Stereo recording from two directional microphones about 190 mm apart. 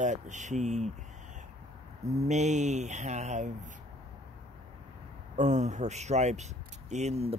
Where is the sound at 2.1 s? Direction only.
35° right (ahead or behind).